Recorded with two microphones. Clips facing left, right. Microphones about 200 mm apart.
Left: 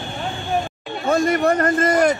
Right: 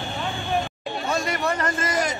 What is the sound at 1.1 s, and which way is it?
A man's voice, 50° left (ahead or behind).